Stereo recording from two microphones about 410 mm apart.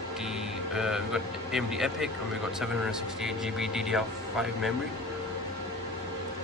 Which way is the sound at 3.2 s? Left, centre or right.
Centre.